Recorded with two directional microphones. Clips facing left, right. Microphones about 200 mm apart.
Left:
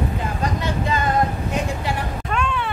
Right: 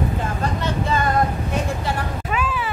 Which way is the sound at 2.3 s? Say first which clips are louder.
Left 1 dB; 5° right (ahead or behind).